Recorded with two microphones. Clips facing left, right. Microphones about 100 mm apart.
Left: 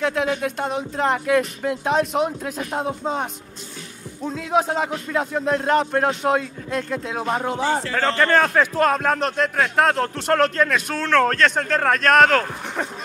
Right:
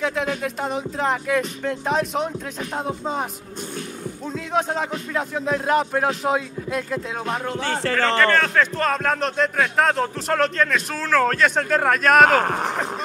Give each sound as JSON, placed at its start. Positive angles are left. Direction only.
{"t": 0.0, "sound": "a man's voice", "side_deg": 0}
{"t": 12.4, "sound": "speech", "side_deg": -65}